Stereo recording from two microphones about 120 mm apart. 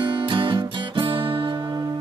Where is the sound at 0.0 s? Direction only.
45° right (ahead or behind).